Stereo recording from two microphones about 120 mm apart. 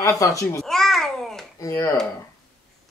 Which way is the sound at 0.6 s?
Centre (ahead or behind).